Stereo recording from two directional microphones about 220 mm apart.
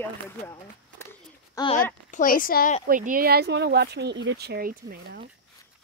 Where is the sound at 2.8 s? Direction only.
40° right (ahead or behind).